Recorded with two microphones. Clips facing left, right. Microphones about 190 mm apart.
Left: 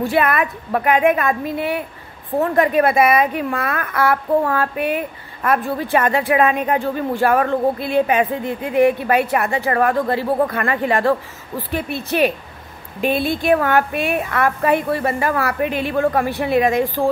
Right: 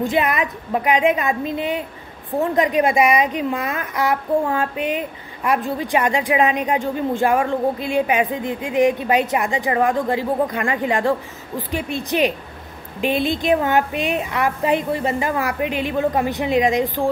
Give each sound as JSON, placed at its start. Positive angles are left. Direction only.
{"t": 0.0, "sound": "a woman's voice", "side_deg": -15}